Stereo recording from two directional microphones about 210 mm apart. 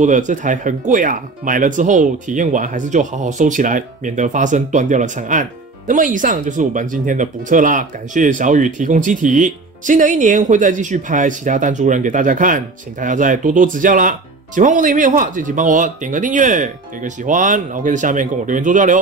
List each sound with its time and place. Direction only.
0.0 s speech: 35° right (ahead or behind)